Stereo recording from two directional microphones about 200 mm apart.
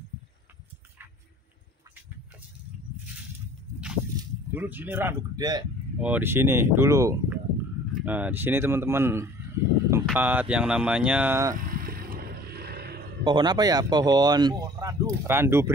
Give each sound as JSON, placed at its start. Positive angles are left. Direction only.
{"t": 4.2, "sound": "speech", "side_deg": -10}
{"t": 5.9, "sound": "speech", "side_deg": -10}
{"t": 11.5, "sound": "vehicle", "side_deg": -45}
{"t": 13.2, "sound": "speech", "side_deg": -25}